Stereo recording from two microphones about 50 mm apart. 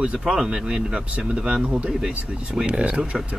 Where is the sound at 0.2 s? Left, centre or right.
Centre.